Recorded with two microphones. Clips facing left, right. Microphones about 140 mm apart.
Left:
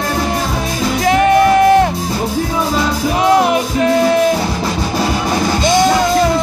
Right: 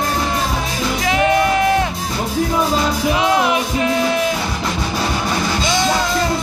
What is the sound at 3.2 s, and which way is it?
Music, 45° left (ahead or behind).